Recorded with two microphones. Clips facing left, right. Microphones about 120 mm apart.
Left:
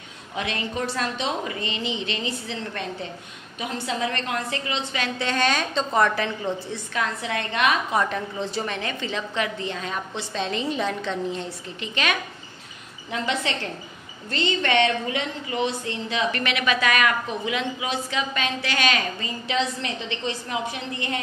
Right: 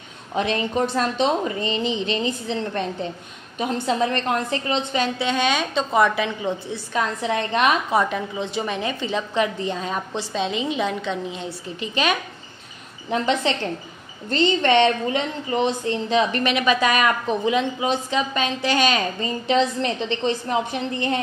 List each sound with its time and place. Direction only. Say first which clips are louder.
0.3 s a woman's voice: right 6 dB; 35° right (ahead or behind)
5.0 s a woman's voice: right 2 dB; 10° right (ahead or behind)
6.9 s a woman's voice: right 5 dB; 25° right (ahead or behind)
8.0 s a woman's voice: right 2 dB; 10° right (ahead or behind)
10.3 s a woman's voice: right 2 dB; 5° right (ahead or behind)
13.1 s a woman's voice: right 5 dB; 30° right (ahead or behind)